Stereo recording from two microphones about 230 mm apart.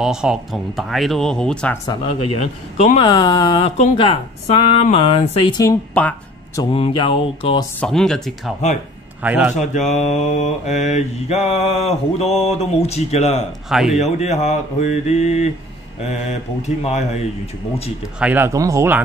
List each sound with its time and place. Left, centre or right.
0.0 s speech: centre
1.9 s speech: left; by 6.6 s centre
6.6 s speech: left
7.8 s speech: centre
9.6 s speech: left
13.7 s speech: centre
13.9 s speech: left
18.2 s speech: centre